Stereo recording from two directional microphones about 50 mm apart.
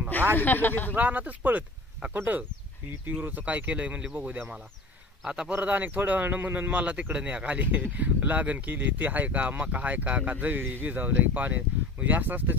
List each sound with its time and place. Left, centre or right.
0.4 s speech: left
0.9 s speech: right
5.2 s a man's voice: centre
5.5 s speech: right